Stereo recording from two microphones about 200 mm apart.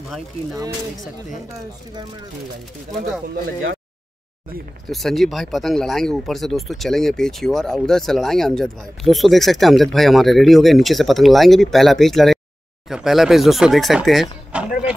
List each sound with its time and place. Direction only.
0.6 s speech: 15° right (ahead or behind)
4.9 s speech: centre (ahead or behind)